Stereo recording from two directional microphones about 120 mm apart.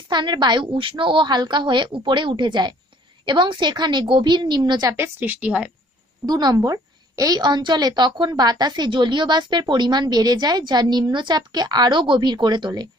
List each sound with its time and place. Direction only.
0.1 s a woman's voice: 40° right (ahead or behind)
4.9 s a woman's voice: 20° right (ahead or behind)
6.2 s a woman's voice: 35° right (ahead or behind)